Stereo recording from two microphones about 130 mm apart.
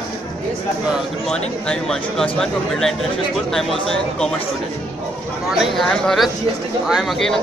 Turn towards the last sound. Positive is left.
turn(degrees=0)  # may be behind; listen again after turning